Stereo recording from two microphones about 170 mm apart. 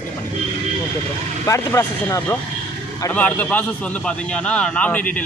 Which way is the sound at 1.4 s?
15° left (ahead or behind).